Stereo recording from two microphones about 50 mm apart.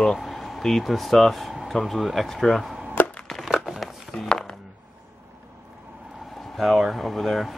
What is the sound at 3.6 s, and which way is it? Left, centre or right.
Chopping, centre.